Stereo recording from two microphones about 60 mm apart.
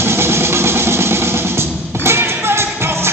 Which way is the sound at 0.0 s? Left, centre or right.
Right.